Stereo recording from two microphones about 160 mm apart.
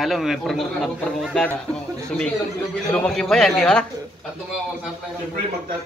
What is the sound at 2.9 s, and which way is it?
Speech, 5° left (ahead or behind).